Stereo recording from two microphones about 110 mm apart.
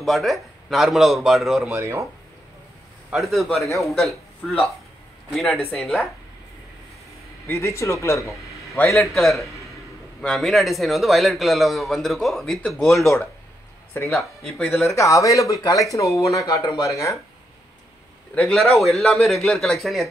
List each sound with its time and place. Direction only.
0.0 s a man's voice: centre (ahead or behind)
1.8 s speech: 25° right (ahead or behind)
3.2 s a man's voice: centre (ahead or behind)
7.4 s speech: 25° left (ahead or behind)
9.0 s a man's voice: centre (ahead or behind)
14.7 s speech: 25° left (ahead or behind)
18.3 s a man's voice: 5° left (ahead or behind)